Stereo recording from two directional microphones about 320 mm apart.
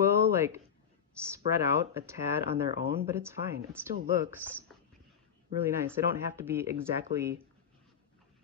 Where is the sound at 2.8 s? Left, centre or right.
Right.